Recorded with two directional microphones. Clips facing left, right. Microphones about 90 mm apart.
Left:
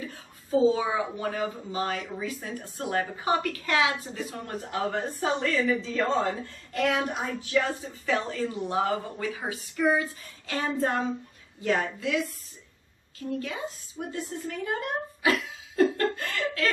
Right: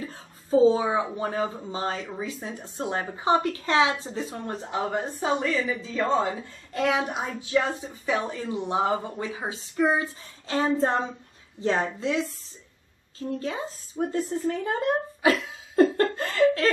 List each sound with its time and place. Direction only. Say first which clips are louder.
0.5 s a woman's voice: right 3 dB; 30° right (ahead or behind)